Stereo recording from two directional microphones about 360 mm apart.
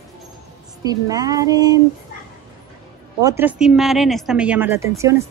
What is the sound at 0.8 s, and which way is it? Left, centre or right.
Speech, centre.